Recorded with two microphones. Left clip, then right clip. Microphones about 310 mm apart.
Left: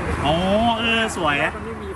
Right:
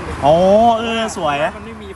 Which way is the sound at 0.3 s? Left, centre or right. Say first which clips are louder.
Right 10 dB; centre.